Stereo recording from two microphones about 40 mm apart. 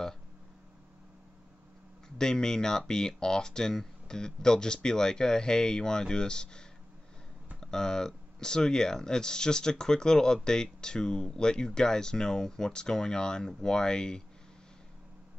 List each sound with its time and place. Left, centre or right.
2.0 s speech: centre
7.6 s speech: centre